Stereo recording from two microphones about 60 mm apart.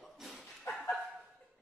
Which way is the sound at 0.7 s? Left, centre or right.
Left.